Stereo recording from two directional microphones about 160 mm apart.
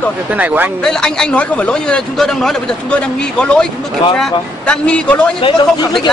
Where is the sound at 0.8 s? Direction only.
5° left (ahead or behind).